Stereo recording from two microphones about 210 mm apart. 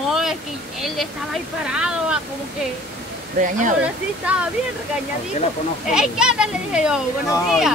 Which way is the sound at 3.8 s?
5° right (ahead or behind).